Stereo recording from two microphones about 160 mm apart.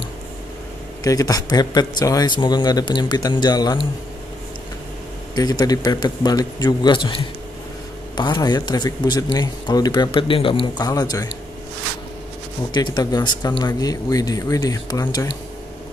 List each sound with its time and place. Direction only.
1.0 s speech: 20° left (ahead or behind)
5.3 s speech: 25° left (ahead or behind)
8.2 s speech: 25° left (ahead or behind)
12.7 s speech: 25° left (ahead or behind)